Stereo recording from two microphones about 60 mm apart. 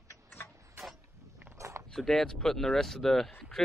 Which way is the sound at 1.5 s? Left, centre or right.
Right.